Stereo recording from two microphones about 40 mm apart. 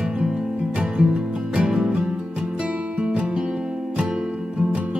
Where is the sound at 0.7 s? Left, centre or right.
Right.